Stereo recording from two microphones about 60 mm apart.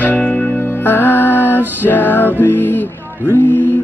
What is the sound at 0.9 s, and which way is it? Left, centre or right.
Music, left.